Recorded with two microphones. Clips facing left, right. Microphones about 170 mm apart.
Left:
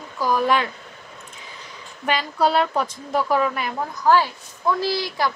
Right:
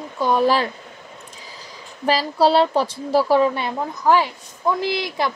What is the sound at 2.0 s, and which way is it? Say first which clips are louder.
A woman's voice: right 4 dB; 35° right (ahead or behind).